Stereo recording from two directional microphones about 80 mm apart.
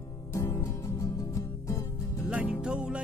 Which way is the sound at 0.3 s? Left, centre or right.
Left.